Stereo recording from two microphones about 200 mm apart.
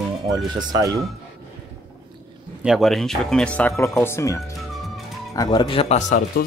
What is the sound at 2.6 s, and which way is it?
Speech, centre (ahead or behind).